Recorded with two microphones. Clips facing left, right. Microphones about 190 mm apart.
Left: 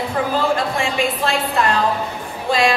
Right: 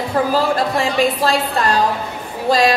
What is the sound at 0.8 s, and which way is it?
A woman's voice, 35° right (ahead or behind).